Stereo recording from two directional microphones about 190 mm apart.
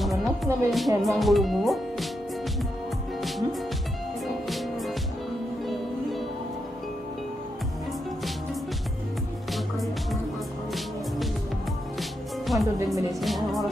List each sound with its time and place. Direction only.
0.0 s speech: centre (ahead or behind)
3.2 s music: centre (ahead or behind)
4.5 s music: centre (ahead or behind)
12.0 s music: centre (ahead or behind)
12.7 s music: 15° right (ahead or behind)
13.1 s music: centre (ahead or behind)